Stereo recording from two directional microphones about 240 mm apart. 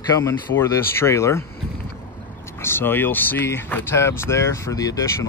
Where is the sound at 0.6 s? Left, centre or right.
Centre.